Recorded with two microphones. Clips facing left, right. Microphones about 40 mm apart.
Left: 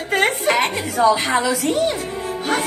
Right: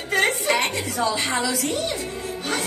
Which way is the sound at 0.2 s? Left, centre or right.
Left.